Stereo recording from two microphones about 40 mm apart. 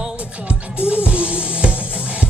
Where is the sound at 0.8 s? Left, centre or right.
Right.